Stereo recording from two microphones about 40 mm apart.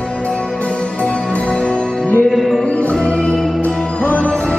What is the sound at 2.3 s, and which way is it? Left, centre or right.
Music, centre.